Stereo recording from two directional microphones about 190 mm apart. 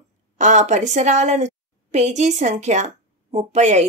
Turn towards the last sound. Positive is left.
turn(degrees=-35)  # may be behind; listen again after turning